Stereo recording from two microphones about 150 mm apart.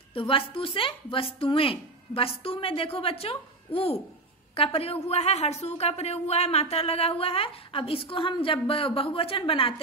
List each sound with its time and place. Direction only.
0.1 s a woman's voice: 35° left (ahead or behind)